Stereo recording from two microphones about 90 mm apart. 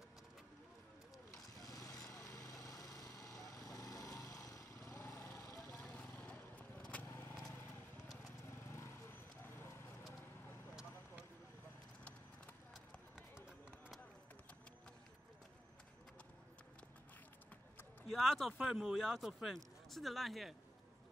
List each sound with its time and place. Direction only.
1.3 s vehicle: 40° left (ahead or behind)
5.9 s vehicle: 15° left (ahead or behind)
8.5 s clip-clop: 25° left (ahead or behind)
13.7 s a sound: 5° right (ahead or behind)
18.1 s speech: centre (ahead or behind)